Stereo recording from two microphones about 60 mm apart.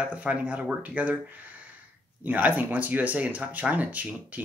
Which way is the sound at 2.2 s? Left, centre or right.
Right.